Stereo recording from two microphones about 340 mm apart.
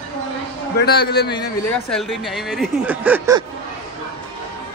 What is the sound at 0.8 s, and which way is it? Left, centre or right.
Speech, left.